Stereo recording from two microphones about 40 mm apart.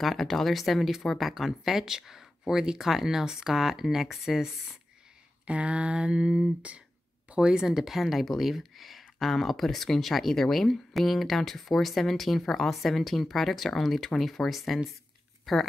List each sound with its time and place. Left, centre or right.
0.0 s speech: centre
5.5 s a sound: right
7.6 s speech: centre